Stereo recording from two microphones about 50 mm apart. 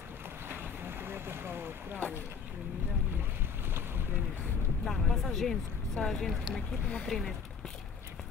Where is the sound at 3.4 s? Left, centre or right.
Right.